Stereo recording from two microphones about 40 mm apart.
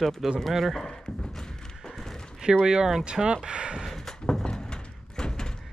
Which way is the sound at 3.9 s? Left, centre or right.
Centre.